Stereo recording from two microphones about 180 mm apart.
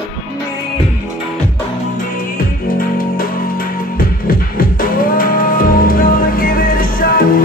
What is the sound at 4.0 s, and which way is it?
Music, 50° left (ahead or behind).